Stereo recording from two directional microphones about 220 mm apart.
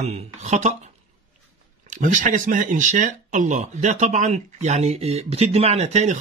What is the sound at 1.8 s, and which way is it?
Speech, 35° right (ahead or behind).